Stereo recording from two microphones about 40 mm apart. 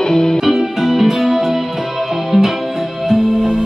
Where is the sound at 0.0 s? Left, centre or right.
Centre.